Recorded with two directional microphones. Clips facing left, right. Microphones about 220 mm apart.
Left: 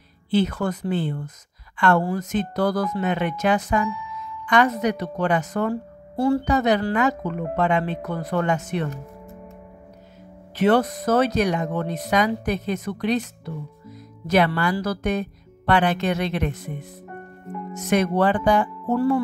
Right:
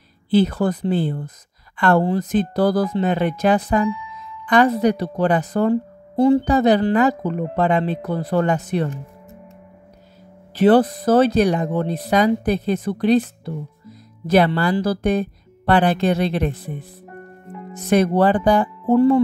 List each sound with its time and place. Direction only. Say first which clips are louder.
0.3 s speech: right 5 dB; 35° right (ahead or behind)
6.1 s a woman's voice: right 6 dB; 20° right (ahead or behind)
6.4 s speech: right 5 dB; 30° right (ahead or behind)
10.5 s speech: right 5 dB; 35° right (ahead or behind)
18.9 s music: right 7 dB; 20° right (ahead or behind)